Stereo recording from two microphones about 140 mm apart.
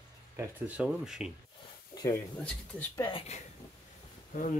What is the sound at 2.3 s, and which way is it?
Speech, 5° left (ahead or behind).